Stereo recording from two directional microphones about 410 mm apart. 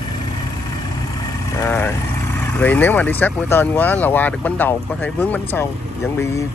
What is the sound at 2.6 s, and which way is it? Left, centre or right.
Speech, centre.